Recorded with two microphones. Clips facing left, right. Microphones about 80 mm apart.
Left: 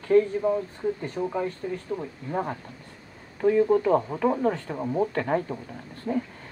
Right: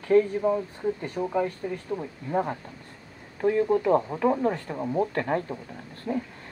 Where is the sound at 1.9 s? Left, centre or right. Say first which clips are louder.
Right 1 dB; centre.